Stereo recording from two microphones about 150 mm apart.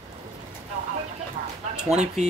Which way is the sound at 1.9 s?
50° right (ahead or behind).